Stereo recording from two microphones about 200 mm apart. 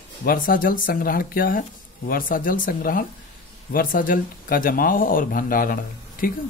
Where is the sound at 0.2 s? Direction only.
45° left (ahead or behind).